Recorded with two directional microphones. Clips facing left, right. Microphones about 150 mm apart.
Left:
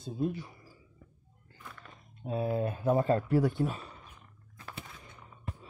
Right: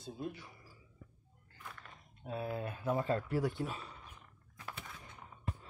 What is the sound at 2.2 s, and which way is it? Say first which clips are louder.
Speech: left 8 dB; 25° left (ahead or behind).